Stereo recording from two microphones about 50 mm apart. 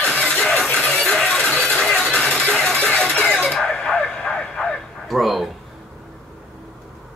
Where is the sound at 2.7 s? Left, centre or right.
Left.